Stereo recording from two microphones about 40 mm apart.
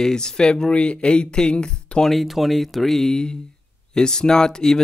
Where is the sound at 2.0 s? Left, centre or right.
Centre.